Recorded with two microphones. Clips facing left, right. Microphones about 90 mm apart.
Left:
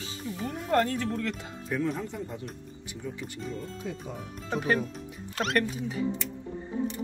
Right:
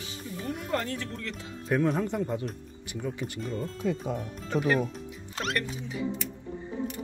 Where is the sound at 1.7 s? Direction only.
60° right (ahead or behind).